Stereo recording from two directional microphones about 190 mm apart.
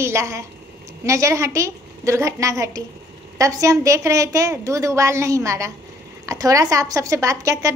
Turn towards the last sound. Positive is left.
turn(degrees=-15)  # may be behind; listen again after turning